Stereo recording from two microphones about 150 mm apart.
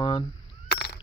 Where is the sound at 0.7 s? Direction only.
90° left.